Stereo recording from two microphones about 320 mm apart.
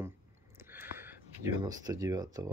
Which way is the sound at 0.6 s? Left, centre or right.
Centre.